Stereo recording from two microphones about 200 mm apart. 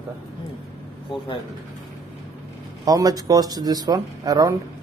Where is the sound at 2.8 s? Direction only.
20° right (ahead or behind).